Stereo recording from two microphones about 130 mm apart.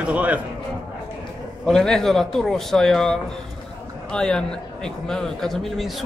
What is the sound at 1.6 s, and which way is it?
A man's voice, 5° left (ahead or behind).